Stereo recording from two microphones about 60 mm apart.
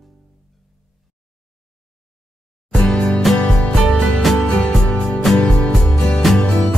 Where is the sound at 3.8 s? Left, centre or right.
Centre.